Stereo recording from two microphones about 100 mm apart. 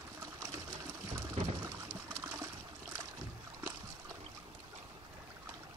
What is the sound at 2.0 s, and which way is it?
Water, 30° right (ahead or behind).